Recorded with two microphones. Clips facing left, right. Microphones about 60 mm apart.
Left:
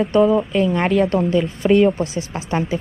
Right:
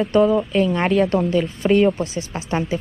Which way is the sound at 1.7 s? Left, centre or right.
Left.